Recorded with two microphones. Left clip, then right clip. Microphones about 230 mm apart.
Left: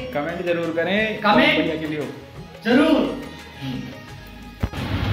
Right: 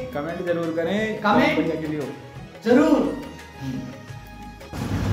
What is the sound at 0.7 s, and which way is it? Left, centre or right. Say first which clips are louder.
Speech: left 3 dB; centre.